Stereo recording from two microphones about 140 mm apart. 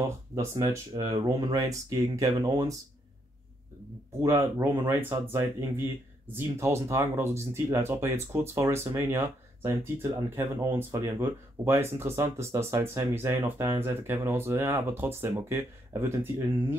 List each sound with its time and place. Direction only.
0.0 s speech: 25° right (ahead or behind)
4.2 s speech: 20° right (ahead or behind)